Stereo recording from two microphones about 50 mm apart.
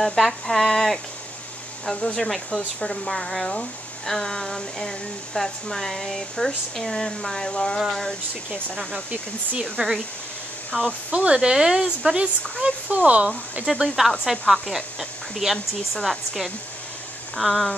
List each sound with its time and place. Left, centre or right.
0.0 s speech: centre
2.1 s speech: centre
9.6 s speech: centre
11.1 s speech: right
12.9 s speech: right
13.9 s speech: centre